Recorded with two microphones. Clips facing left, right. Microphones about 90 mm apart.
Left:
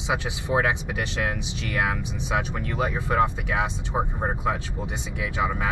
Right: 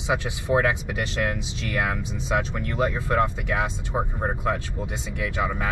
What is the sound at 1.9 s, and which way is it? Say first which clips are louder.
Speech: right 1 dB; 10° left (ahead or behind).